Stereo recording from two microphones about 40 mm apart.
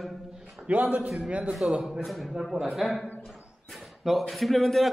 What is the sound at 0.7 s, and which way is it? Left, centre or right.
Speech, right.